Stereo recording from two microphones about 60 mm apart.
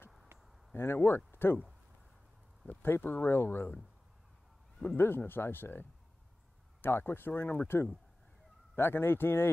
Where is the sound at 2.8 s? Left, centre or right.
Left.